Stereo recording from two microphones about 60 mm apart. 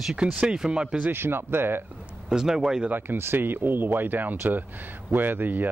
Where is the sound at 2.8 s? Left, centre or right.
Right.